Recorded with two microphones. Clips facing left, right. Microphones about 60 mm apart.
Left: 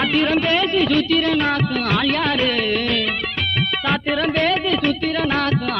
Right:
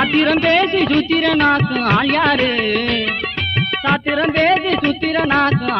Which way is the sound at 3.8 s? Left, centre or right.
Centre.